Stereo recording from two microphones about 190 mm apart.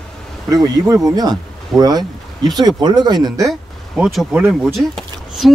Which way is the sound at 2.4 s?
20° right (ahead or behind).